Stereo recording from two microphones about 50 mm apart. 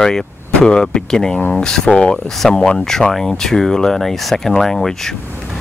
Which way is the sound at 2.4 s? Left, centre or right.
Centre.